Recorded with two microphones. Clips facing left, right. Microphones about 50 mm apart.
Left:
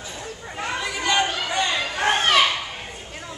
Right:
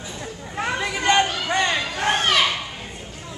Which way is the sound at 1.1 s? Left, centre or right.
Right.